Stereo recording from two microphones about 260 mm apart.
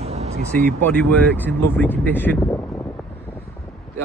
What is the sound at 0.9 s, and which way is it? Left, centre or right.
Speech, centre.